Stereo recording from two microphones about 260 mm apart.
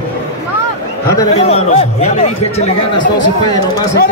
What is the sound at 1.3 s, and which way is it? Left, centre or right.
A man's voice, left.